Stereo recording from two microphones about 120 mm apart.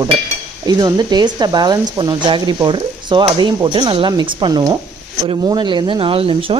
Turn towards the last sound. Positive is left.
turn(degrees=-50)  # may be behind; listen again after turning